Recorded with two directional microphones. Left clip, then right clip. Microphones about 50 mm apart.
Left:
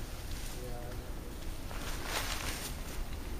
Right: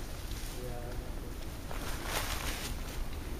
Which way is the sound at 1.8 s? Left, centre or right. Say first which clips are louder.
Even; centre.